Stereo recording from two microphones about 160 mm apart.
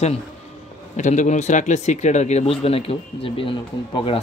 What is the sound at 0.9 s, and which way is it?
Speech, 50° left (ahead or behind).